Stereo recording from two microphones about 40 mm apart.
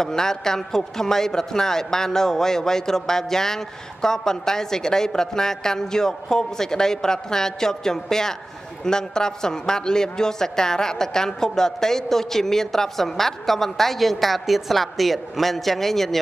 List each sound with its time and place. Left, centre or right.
0.0 s a man's voice: centre